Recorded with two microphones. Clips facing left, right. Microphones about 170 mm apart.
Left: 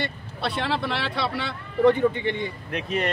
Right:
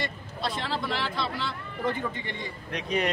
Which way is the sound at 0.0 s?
65° left (ahead or behind).